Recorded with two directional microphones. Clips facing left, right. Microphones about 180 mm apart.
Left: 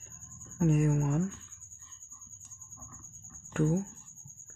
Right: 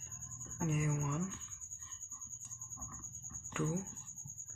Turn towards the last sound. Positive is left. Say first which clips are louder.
# left 9 dB
turn(degrees=50)  # may be behind; listen again after turning